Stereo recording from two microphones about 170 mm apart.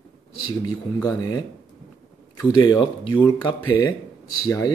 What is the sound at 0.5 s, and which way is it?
Speech, 20° left (ahead or behind).